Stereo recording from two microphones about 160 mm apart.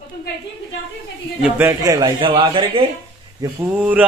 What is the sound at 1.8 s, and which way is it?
Speech, 30° right (ahead or behind).